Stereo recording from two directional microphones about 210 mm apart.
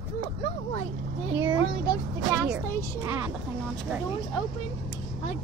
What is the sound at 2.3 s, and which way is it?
Speech, 10° right (ahead or behind).